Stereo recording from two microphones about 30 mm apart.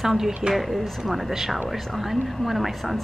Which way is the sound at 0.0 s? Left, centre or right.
Centre.